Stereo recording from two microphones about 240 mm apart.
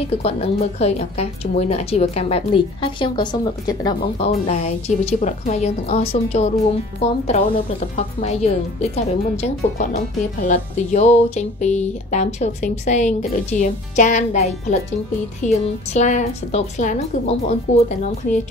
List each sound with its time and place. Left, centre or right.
0.0 s a woman's voice: left
4.2 s a woman's voice: left